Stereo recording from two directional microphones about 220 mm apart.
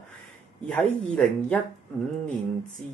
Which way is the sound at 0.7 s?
5° left (ahead or behind).